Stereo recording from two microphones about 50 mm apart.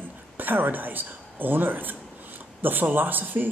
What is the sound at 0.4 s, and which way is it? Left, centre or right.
Speech, right.